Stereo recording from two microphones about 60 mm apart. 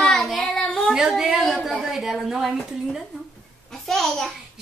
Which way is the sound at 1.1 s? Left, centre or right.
Centre.